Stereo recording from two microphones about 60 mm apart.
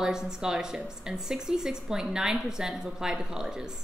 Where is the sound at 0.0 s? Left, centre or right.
Centre.